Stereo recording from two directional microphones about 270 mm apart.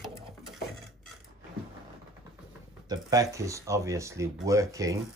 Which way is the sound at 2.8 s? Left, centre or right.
Centre.